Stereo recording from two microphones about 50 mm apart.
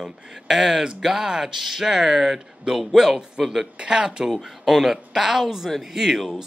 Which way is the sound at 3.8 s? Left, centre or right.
Centre.